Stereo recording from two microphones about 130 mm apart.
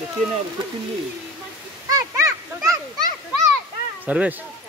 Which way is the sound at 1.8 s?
25° right (ahead or behind).